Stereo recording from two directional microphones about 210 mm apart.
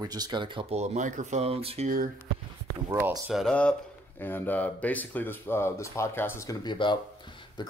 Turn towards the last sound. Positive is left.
turn(degrees=20)  # may be behind; listen again after turning